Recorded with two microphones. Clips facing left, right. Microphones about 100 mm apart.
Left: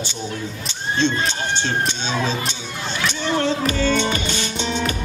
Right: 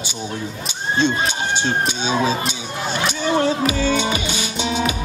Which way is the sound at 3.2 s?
10° right (ahead or behind).